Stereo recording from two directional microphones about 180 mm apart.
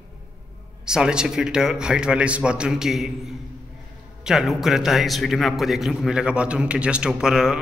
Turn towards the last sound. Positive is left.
turn(degrees=-5)  # may be behind; listen again after turning